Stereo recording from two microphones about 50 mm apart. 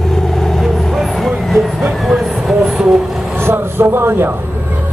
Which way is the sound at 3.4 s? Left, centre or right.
Right.